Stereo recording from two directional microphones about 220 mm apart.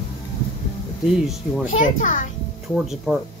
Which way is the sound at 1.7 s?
35° left (ahead or behind).